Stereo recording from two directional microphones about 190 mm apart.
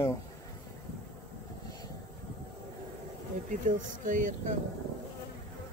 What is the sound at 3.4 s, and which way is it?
Speech, 45° right (ahead or behind).